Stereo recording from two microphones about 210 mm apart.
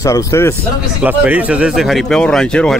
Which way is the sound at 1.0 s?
10° right (ahead or behind).